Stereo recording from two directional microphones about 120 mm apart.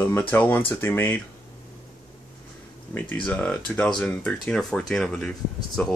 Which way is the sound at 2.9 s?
10° left (ahead or behind).